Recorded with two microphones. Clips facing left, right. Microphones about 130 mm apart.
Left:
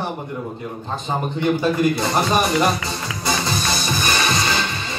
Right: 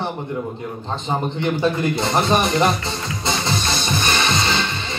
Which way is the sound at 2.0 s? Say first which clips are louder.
Right 1 dB; 25° right (ahead or behind).